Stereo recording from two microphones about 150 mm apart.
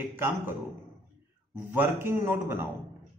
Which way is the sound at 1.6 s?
15° right (ahead or behind).